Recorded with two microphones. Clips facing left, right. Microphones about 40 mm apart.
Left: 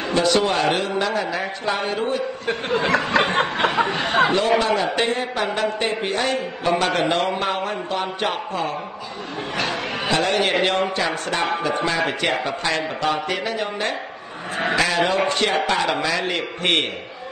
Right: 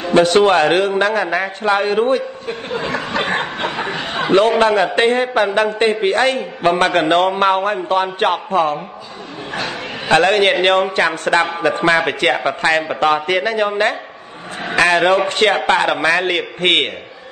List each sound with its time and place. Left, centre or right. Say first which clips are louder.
0.1 s a man's voice: right 8 dB; right
2.4 s speech: left 1 dB; left
3.3 s chuckle: left 2 dB; left
4.0 s speech: left 4 dB; left
4.3 s a man's voice: right 6 dB; right
10.0 s a man's voice: right 8 dB; right